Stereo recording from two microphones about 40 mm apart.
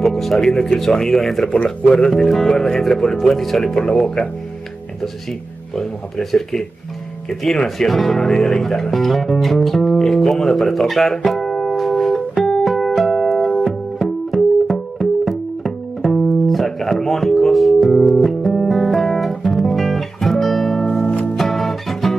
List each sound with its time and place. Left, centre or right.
0.0 s speech: centre
1.5 s speech: left
1.9 s speech: centre
5.8 s speech: centre
8.9 s music: centre
15.2 s music: centre
19.5 s guitar: centre
20.8 s music: left
21.4 s music: centre